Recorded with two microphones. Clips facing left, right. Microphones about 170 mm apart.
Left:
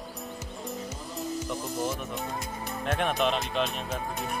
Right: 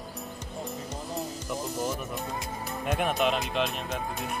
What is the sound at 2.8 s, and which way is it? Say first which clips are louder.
Speech: even; 5° right (ahead or behind).